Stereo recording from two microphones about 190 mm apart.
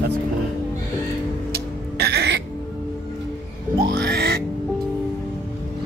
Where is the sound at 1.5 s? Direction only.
60° right (ahead or behind).